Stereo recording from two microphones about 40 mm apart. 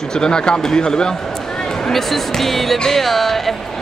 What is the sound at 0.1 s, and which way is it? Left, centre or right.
Speech, centre.